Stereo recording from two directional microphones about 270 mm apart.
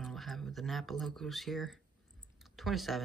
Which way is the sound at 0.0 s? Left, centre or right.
Centre.